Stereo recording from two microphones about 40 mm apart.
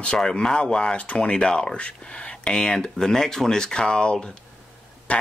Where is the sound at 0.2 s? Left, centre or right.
Centre.